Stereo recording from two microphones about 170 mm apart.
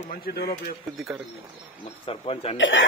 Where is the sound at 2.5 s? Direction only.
90° left.